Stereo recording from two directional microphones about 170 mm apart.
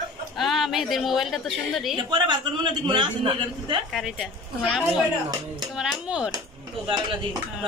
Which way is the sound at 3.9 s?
Centre (ahead or behind).